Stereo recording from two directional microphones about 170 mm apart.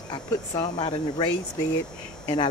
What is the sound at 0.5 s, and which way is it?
Speech, 35° left (ahead or behind).